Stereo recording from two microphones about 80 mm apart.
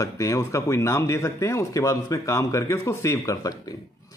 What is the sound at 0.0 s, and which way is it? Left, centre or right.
Speech, left.